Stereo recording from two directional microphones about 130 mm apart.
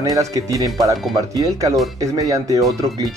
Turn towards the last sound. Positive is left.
turn(degrees=-25)  # may be behind; listen again after turning